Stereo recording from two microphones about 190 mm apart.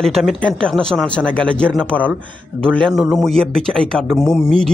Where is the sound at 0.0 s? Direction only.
Centre (ahead or behind).